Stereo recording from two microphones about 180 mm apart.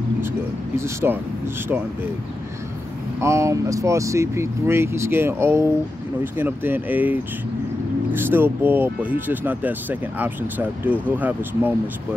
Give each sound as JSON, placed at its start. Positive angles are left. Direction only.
{"t": 0.7, "sound": "speech", "side_deg": -15}
{"t": 3.2, "sound": "speech", "side_deg": -15}